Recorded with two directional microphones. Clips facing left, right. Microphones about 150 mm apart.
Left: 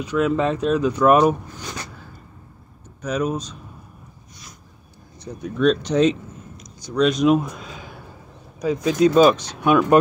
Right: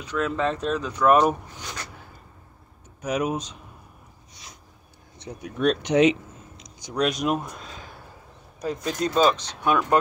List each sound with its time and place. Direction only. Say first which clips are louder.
0.0 s speech: left 5 dB; 10° left (ahead or behind)
3.0 s speech: left 2 dB; 15° right (ahead or behind)
5.4 s speech: left 5 dB; 10° right (ahead or behind)
7.3 s speech: left 8 dB; 5° left (ahead or behind)